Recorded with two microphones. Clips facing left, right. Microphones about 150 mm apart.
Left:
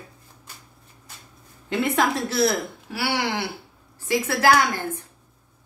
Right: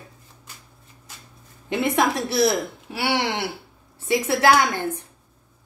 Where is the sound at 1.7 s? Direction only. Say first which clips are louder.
Right 1 dB; 20° right (ahead or behind).